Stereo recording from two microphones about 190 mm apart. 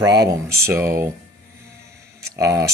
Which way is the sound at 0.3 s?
15° right (ahead or behind).